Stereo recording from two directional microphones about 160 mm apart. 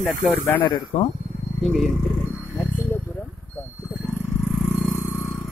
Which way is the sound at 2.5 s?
15° left (ahead or behind).